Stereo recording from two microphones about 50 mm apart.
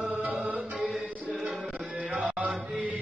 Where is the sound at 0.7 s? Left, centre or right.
Centre.